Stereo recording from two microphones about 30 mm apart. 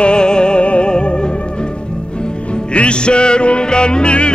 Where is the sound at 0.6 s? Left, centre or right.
Left.